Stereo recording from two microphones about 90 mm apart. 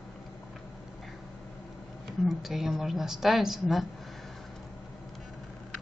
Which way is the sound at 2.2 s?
5° right (ahead or behind).